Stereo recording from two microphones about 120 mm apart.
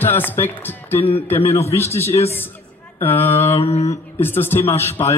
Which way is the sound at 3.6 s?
60° left (ahead or behind).